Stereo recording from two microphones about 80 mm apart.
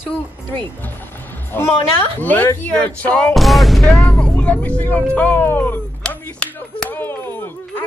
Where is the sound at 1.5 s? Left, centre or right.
Left.